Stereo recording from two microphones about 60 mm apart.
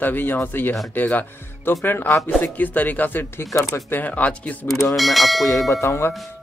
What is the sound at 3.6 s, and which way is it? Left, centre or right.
Speech, left.